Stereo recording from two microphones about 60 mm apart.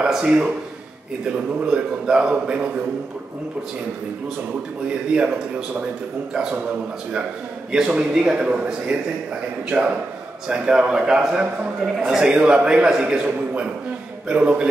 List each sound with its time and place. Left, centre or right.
0.0 s a man's voice: centre
7.7 s a man's voice: centre
12.3 s a man's voice: centre